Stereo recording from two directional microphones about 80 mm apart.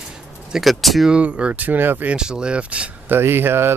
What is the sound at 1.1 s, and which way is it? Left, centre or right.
Speech, centre.